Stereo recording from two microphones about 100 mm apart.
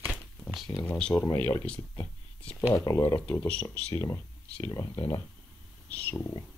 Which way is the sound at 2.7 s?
30° left (ahead or behind).